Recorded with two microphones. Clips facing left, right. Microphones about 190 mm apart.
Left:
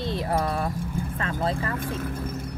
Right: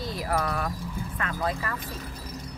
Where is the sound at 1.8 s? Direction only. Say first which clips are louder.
Left 8 dB; 50° left (ahead or behind).